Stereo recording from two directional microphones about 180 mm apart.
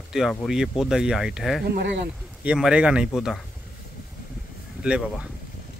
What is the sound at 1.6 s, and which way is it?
Speech, 70° right (ahead or behind).